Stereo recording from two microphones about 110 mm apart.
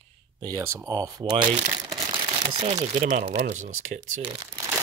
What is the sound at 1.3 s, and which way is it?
Speech, 50° right (ahead or behind).